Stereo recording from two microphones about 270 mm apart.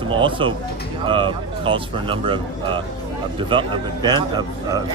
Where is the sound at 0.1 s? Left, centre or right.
Centre.